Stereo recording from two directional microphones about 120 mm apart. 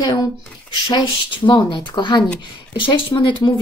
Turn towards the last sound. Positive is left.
turn(degrees=40)  # may be behind; listen again after turning